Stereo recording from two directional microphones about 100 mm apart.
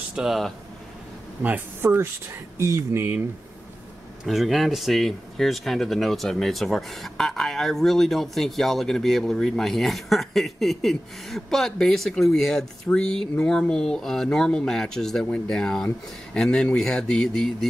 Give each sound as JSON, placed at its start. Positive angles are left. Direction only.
{"t": 0.1, "sound": "speech", "side_deg": -5}
{"t": 1.4, "sound": "speech", "side_deg": -20}
{"t": 4.3, "sound": "speech", "side_deg": 0}